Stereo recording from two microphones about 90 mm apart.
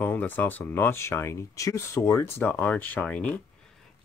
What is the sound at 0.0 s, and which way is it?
Speech, 20° left (ahead or behind).